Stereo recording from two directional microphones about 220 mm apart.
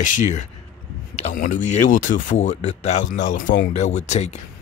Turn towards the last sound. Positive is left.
turn(degrees=30)  # may be behind; listen again after turning